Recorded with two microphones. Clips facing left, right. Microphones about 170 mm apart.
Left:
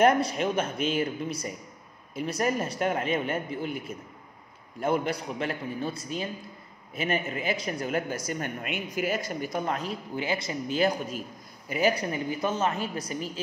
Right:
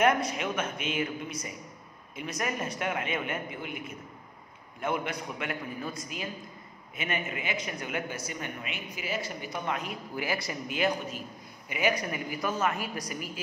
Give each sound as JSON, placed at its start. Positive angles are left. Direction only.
{"t": 0.0, "sound": "speech", "side_deg": 35}